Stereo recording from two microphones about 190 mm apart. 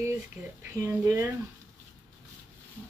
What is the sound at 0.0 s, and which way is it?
Speech, 15° right (ahead or behind).